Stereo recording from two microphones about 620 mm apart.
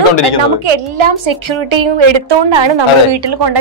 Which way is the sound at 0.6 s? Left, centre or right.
Right.